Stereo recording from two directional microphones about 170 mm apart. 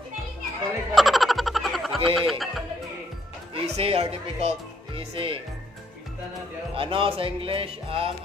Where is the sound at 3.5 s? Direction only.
35° right (ahead or behind).